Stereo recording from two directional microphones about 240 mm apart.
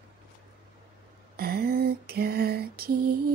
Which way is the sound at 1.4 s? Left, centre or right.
Right.